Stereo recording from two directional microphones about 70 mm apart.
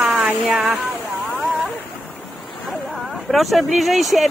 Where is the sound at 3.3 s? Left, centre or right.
Centre.